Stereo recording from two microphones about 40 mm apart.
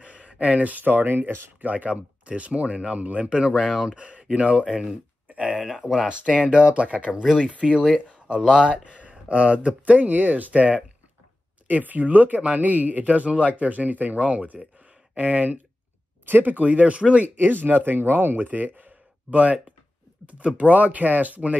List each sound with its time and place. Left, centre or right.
0.0 s speech: right
1.6 s speech: right
1.9 s speech: right
3.3 s speech: right
6.0 s speech: right
16.3 s speech: right
16.5 s speech: right
17.4 s speech: right
18.8 s a sound: right
20.2 s speech: right